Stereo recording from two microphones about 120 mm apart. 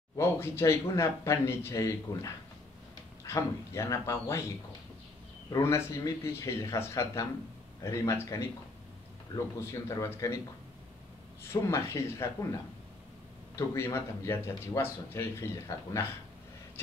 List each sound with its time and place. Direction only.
0.2 s speech: 20° left (ahead or behind)
5.5 s speech: 20° left (ahead or behind)
9.7 s speech: 25° left (ahead or behind)
11.4 s speech: 25° left (ahead or behind)
13.6 s speech: 20° left (ahead or behind)